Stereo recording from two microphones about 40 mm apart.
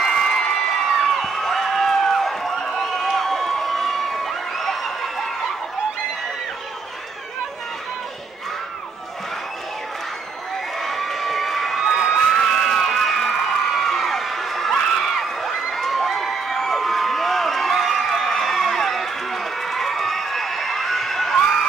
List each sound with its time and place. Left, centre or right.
0.0 s crowd: centre
10.8 s crowd: centre
11.8 s a sound: centre
12.4 s crowd: centre